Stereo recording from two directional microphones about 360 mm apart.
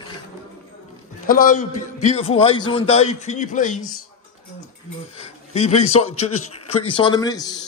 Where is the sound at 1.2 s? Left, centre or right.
Left.